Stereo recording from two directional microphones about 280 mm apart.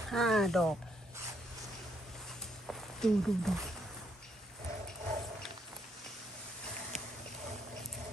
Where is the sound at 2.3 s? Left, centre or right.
Centre.